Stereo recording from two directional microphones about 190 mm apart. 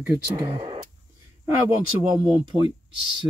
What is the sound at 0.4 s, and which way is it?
Speech, 25° right (ahead or behind).